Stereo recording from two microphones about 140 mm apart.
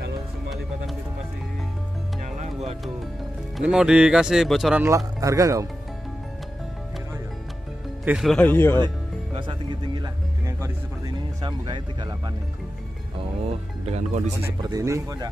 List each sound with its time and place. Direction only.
2.3 s music: 55° right (ahead or behind)
3.5 s speech: 5° right (ahead or behind)
4.8 s speech: 25° right (ahead or behind)
8.0 s speech: 10° right (ahead or behind)
8.3 s a man's voice: 10° left (ahead or behind)
8.8 s speech: 35° right (ahead or behind)
10.4 s speech: 20° right (ahead or behind)
11.4 s speech: 35° right (ahead or behind)
13.5 s speech: 50° right (ahead or behind)
14.6 s speech: 25° right (ahead or behind)